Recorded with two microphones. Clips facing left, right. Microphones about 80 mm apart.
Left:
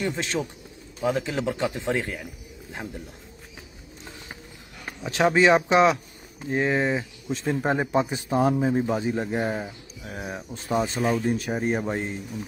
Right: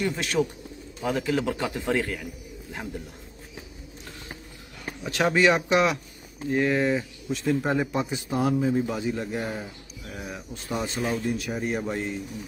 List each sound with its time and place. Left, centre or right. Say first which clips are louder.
0.0 s speech: right 2 dB; left
5.0 s a man's voice: left 2 dB; left